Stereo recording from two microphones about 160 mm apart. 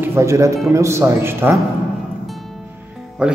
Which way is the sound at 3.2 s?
5° right (ahead or behind).